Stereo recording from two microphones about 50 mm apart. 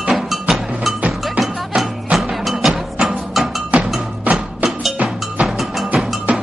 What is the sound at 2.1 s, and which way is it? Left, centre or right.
Music, right.